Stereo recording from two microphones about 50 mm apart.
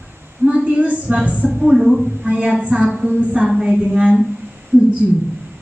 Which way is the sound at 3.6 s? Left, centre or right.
Centre.